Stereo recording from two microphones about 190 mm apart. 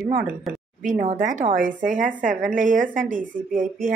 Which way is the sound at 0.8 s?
45° right (ahead or behind).